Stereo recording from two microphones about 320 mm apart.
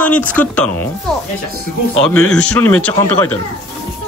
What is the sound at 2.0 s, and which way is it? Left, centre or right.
A man's voice, centre.